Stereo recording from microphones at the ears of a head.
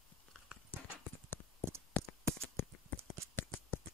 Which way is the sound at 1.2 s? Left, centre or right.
Left.